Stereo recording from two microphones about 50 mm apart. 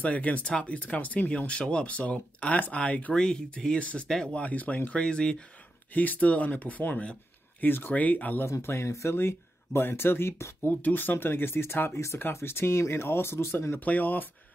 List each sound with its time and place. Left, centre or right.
0.0 s speech: left
1.5 s speech: left
3.2 s speech: centre
5.0 s speech: centre
5.9 s speech: left
7.9 s speech: left
8.5 s speech: left
9.1 s speech: left
10.7 s speech: left
12.4 s speech: left
13.7 s speech: left